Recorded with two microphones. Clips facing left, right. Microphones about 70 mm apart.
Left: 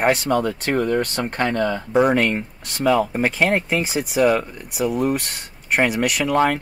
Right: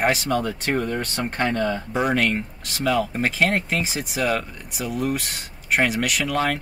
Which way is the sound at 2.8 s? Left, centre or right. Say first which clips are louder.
Left 4 dB; left.